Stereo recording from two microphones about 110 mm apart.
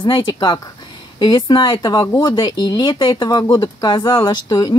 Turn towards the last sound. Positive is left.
turn(degrees=40)  # may be behind; listen again after turning